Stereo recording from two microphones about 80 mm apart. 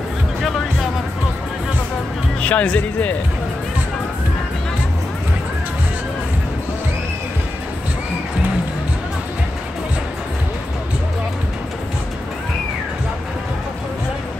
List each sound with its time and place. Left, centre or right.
2.4 s speech: centre